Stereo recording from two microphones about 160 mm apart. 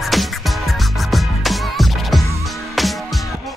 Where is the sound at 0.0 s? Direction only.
Centre (ahead or behind).